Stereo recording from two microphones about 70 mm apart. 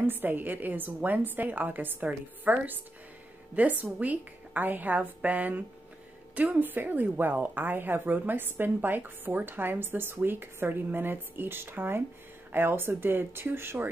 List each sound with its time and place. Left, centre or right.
0.0 s a woman's voice: right